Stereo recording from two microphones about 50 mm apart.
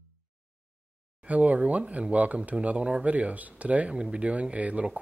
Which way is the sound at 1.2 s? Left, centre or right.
Right.